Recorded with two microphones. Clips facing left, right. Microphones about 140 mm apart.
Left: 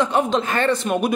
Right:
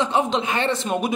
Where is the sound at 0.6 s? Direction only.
25° right (ahead or behind).